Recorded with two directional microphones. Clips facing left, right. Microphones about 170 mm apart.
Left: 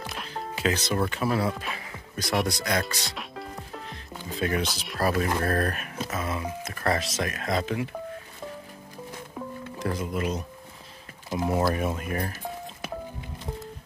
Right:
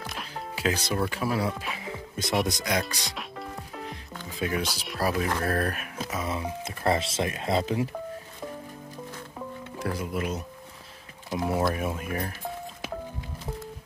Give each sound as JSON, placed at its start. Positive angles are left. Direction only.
{"t": 0.0, "sound": "music", "side_deg": 0}
{"t": 0.9, "sound": "speech", "side_deg": -5}
{"t": 2.4, "sound": "speech", "side_deg": -15}
{"t": 6.8, "sound": "speech", "side_deg": -25}
{"t": 9.8, "sound": "speech", "side_deg": -5}